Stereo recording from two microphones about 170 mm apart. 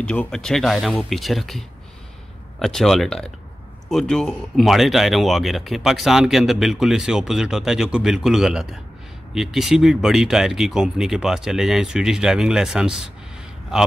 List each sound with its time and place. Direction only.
0.0 s speech: 5° left (ahead or behind)
2.6 s speech: centre (ahead or behind)